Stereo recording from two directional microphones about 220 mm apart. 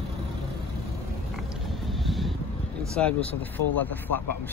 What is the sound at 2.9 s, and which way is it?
Speech, 5° left (ahead or behind).